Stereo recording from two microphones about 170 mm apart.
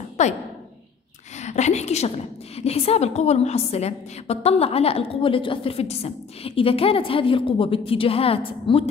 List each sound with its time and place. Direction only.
0.2 s speech: 45° left (ahead or behind)
1.4 s a woman's voice: 45° left (ahead or behind)